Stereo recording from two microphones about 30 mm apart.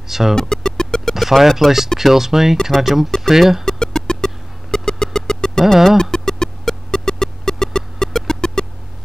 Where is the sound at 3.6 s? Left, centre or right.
Centre.